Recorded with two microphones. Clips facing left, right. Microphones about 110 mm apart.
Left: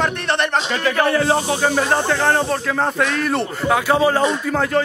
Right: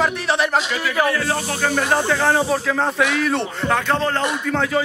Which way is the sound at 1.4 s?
15° left (ahead or behind).